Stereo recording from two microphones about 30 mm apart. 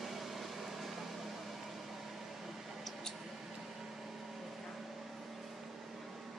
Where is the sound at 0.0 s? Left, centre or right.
Centre.